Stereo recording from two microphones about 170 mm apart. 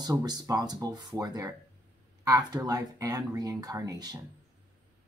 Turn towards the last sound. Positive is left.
turn(degrees=-20)  # may be behind; listen again after turning